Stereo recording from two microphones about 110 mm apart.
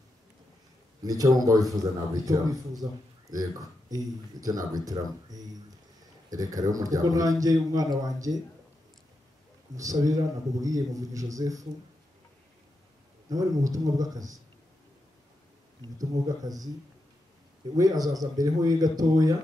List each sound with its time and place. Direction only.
1.0 s a man's voice: 35° right (ahead or behind)
9.8 s a man's voice: 30° right (ahead or behind)
13.3 s a man's voice: 35° right (ahead or behind)
16.0 s a man's voice: 35° right (ahead or behind)
17.7 s a man's voice: 35° right (ahead or behind)